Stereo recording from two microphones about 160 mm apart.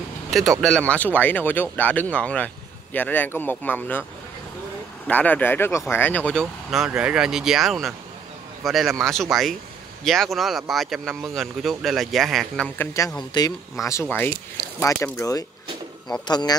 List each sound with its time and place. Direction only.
0.3 s speech: centre (ahead or behind)
5.0 s speech: 10° left (ahead or behind)
13.3 s speech: 20° left (ahead or behind)